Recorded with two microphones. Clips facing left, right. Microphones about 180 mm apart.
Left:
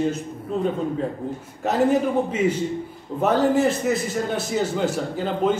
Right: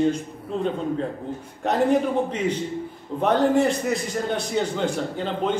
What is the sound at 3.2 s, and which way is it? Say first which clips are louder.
A man's voice: even; 5° left (ahead or behind).